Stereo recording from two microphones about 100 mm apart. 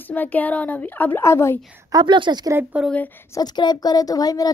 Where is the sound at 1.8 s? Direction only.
45° right (ahead or behind).